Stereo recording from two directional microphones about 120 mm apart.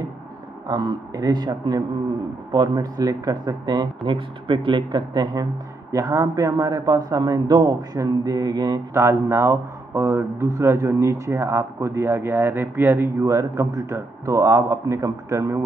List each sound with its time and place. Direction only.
0.7 s speech: 35° right (ahead or behind)
8.9 s speech: 20° right (ahead or behind)